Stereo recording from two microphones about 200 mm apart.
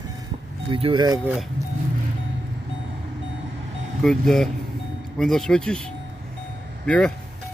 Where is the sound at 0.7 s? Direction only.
25° right (ahead or behind).